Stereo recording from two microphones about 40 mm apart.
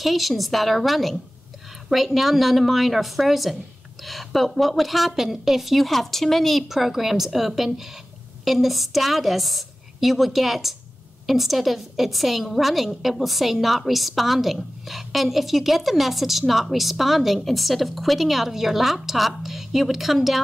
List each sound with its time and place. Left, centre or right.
0.0 s a woman's voice: centre